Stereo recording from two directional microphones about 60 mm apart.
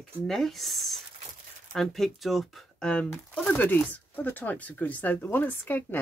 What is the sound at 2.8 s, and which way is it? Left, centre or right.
Speech, centre.